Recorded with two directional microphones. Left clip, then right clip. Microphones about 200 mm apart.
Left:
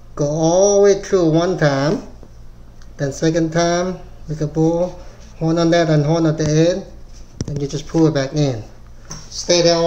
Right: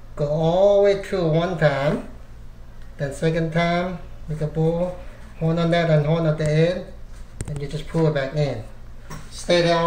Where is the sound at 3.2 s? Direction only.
55° left (ahead or behind).